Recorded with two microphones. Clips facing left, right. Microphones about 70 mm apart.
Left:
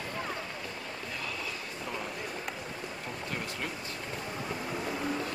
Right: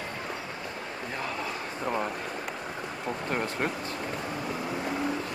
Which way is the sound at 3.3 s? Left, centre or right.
Right.